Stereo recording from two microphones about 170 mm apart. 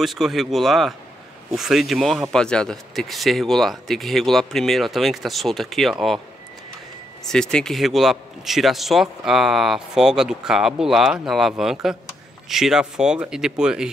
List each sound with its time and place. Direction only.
0.0 s a man's voice: centre (ahead or behind)
7.2 s a man's voice: 5° left (ahead or behind)